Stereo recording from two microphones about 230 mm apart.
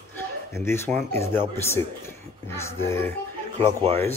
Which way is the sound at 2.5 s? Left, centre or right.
Centre.